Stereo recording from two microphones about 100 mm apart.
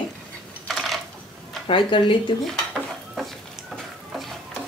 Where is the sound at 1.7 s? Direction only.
55° left (ahead or behind).